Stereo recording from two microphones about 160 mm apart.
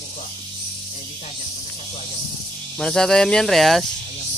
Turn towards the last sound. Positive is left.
turn(degrees=0)  # may be behind; listen again after turning